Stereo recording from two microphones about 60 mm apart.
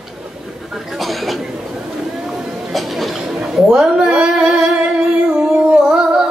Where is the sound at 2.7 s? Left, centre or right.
Centre.